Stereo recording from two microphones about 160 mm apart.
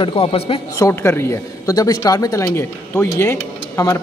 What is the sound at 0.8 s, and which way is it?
A man's voice, 15° left (ahead or behind).